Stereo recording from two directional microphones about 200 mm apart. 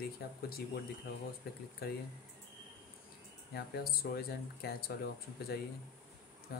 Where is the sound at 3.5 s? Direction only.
50° left (ahead or behind).